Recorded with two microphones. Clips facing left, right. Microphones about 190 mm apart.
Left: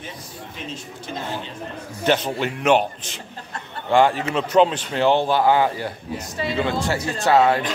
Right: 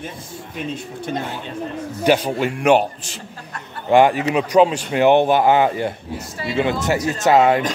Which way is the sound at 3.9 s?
15° right (ahead or behind).